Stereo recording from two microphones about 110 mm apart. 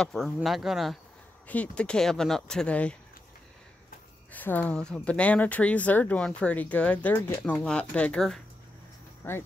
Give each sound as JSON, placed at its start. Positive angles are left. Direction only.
{"t": 0.0, "sound": "speech", "side_deg": 0}
{"t": 1.5, "sound": "speech", "side_deg": 10}
{"t": 4.3, "sound": "speech", "side_deg": 15}
{"t": 9.2, "sound": "speech", "side_deg": 20}